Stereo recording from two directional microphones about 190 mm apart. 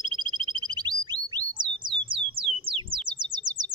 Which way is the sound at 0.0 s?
25° right (ahead or behind).